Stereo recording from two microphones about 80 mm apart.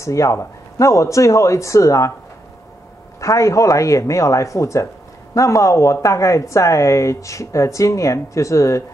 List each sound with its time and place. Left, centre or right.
0.0 s a woman's voice: left
3.2 s a woman's voice: left